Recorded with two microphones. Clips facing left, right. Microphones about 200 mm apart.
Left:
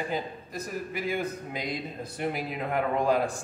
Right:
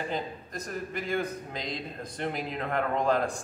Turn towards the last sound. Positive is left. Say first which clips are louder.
# left 1 dB
turn(degrees=10)  # may be behind; listen again after turning